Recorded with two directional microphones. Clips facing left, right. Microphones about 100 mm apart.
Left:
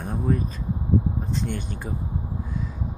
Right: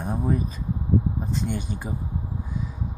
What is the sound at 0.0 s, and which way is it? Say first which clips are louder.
Vehicle: even; 10° right (ahead or behind).